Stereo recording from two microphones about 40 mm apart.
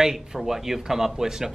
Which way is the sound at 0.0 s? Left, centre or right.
Centre.